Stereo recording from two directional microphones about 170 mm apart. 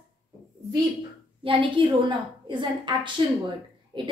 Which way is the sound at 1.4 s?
30° right (ahead or behind).